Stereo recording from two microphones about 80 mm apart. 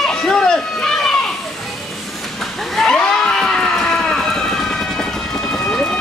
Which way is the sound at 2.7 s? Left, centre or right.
Centre.